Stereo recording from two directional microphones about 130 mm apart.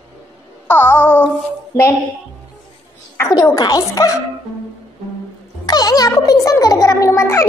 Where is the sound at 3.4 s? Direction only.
25° left (ahead or behind).